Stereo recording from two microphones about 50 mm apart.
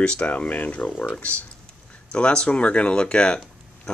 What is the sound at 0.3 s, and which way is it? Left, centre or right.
Speech, left.